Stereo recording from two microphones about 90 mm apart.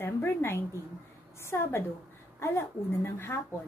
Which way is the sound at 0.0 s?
25° left (ahead or behind).